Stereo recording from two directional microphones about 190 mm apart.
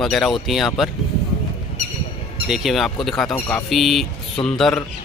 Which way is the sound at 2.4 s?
Centre (ahead or behind).